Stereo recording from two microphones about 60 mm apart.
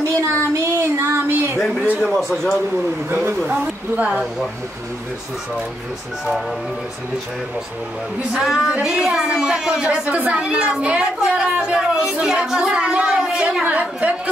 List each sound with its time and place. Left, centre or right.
0.1 s child singing: right
2.0 s a man's voice: centre
3.4 s a woman's voice: right
8.3 s a woman's voice: centre
13.7 s a woman's voice: right